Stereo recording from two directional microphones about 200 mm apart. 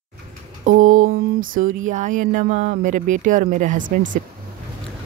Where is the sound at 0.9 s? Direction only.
90° right.